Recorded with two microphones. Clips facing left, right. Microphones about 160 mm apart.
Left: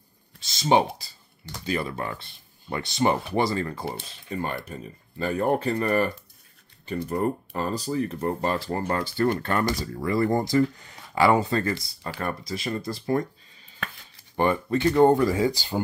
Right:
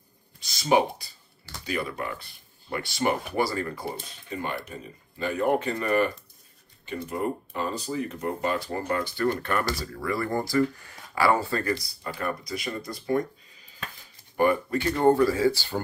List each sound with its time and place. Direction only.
0.5 s speech: 25° left (ahead or behind)
5.2 s speech: 35° left (ahead or behind)
14.3 s speech: 25° left (ahead or behind)